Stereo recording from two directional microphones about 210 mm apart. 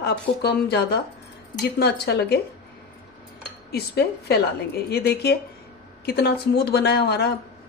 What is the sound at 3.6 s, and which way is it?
A woman's voice, 50° left (ahead or behind).